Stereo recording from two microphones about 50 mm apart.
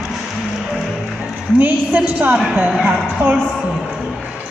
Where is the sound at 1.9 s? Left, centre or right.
Right.